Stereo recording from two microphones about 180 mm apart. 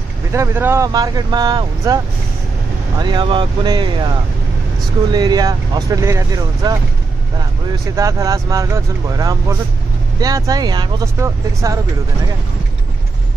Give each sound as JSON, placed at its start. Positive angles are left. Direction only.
{"t": 0.3, "sound": "speech", "side_deg": -15}
{"t": 3.0, "sound": "speech", "side_deg": -25}
{"t": 5.1, "sound": "speech", "side_deg": -20}
{"t": 7.9, "sound": "speech", "side_deg": -15}